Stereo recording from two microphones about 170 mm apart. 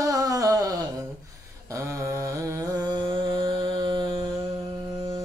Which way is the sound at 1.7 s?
15° right (ahead or behind).